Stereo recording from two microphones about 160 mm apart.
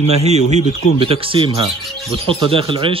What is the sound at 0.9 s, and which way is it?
A man's voice, 35° right (ahead or behind).